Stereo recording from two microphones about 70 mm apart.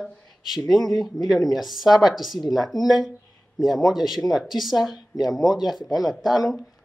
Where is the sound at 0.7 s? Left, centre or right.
Centre.